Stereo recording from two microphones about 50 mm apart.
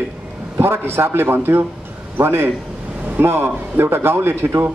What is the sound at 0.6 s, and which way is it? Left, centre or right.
A man's voice, right.